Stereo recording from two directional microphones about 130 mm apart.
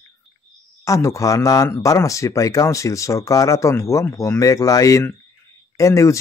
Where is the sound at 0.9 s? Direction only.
25° left (ahead or behind).